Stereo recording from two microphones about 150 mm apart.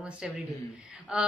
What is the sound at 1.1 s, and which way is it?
Speech, 5° right (ahead or behind).